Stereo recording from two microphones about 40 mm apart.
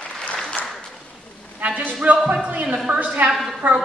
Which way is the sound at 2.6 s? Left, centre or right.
Centre.